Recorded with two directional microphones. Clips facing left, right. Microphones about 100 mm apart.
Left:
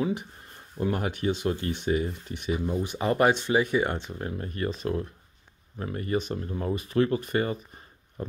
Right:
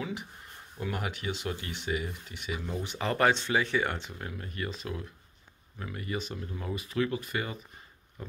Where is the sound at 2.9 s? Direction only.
20° left (ahead or behind).